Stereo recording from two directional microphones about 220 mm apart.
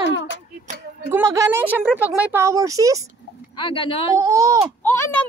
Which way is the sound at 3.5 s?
25° left (ahead or behind).